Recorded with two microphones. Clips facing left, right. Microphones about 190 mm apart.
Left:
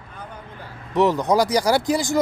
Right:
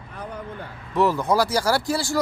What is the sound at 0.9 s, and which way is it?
Speech, 20° left (ahead or behind).